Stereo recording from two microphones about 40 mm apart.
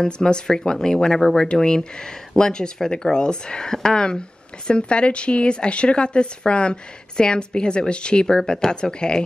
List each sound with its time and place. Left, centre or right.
0.0 s speech: centre